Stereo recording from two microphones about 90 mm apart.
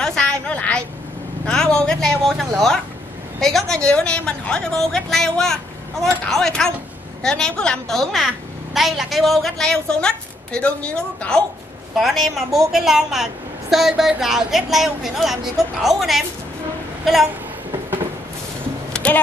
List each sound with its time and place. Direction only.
0.0 s a sound: 5° left (ahead or behind)
1.4 s vehicle: 5° left (ahead or behind)
3.3 s a woman's voice: 5° left (ahead or behind)
19.0 s speech: 15° left (ahead or behind)